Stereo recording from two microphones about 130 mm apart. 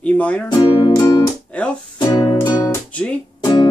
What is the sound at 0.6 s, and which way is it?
Music, 40° left (ahead or behind).